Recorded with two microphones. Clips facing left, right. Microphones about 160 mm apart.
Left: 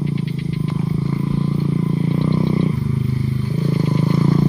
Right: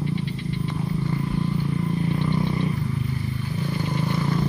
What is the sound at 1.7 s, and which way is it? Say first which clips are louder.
Vehicle: left 5 dB; 20° left (ahead or behind).